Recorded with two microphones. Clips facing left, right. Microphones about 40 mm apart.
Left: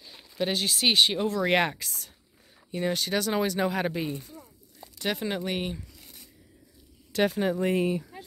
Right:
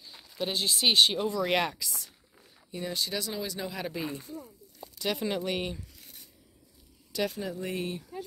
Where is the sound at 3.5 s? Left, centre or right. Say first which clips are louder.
Left 8 dB; left.